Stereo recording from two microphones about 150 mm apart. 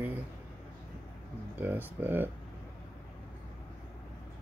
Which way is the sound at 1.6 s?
15° right (ahead or behind).